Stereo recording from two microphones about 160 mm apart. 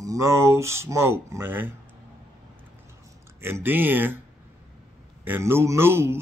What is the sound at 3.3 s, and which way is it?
Speech, 15° right (ahead or behind).